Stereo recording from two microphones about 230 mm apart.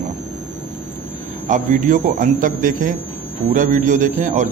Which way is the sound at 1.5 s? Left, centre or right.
Right.